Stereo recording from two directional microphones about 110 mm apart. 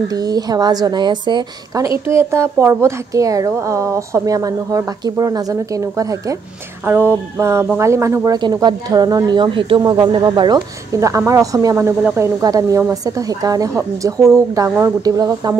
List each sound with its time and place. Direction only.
0.1 s a woman's voice: 35° right (ahead or behind)
1.9 s speech: 25° right (ahead or behind)
6.9 s speech: 20° right (ahead or behind)
8.4 s speech: 40° right (ahead or behind)
10.9 s a woman's voice: 30° right (ahead or behind)